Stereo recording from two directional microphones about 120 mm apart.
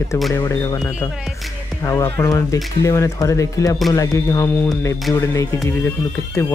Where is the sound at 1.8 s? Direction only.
20° left (ahead or behind).